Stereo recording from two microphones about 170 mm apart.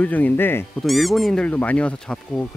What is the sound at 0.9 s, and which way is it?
Speech, centre (ahead or behind).